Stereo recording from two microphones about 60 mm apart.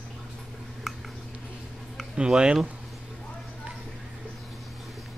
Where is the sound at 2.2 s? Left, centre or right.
Centre.